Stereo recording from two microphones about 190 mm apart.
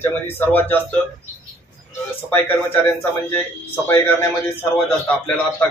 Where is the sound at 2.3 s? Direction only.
10° left (ahead or behind).